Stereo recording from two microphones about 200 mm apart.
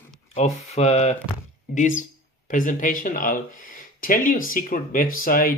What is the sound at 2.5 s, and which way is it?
Speech, 40° left (ahead or behind).